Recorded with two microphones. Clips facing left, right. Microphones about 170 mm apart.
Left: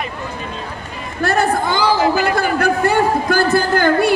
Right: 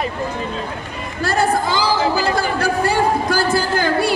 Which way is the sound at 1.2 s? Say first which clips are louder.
Left 1 dB; 55° left (ahead or behind).